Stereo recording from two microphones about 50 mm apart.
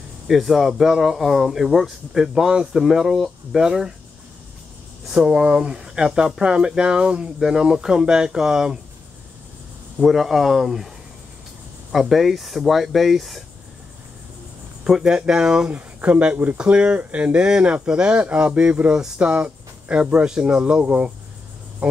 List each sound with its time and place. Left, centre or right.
0.3 s speech: centre
5.0 s speech: centre
9.9 s speech: centre
11.9 s speech: centre
14.9 s speech: centre
15.7 s speech: right
16.5 s speech: right